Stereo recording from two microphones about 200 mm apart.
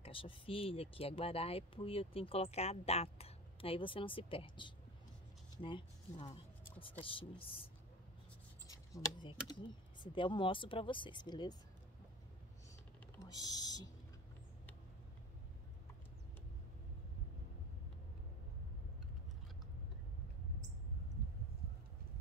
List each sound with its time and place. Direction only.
0.0 s speech: 25° left (ahead or behind)
8.6 s speech: 15° left (ahead or behind)
13.2 s speech: 20° left (ahead or behind)